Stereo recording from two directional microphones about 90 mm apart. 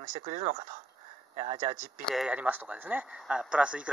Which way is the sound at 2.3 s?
20° right (ahead or behind).